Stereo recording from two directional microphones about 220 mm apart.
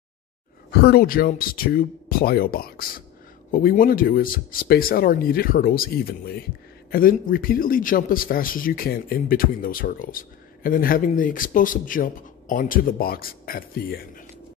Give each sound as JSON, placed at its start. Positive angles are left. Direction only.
{"t": 0.7, "sound": "a man's voice", "side_deg": 45}